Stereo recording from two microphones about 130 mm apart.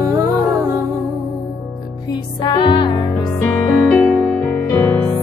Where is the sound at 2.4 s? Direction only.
35° left (ahead or behind).